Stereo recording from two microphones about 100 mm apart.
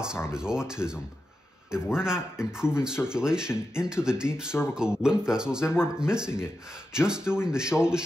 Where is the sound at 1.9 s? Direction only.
5° right (ahead or behind).